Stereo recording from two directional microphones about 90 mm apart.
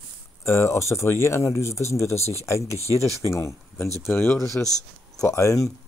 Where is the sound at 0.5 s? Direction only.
30° left (ahead or behind).